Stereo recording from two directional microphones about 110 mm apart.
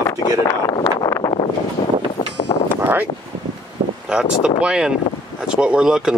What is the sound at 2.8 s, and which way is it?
Speech, 15° right (ahead or behind).